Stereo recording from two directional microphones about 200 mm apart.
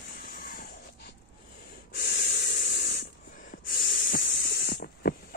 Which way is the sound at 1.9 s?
50° left (ahead or behind).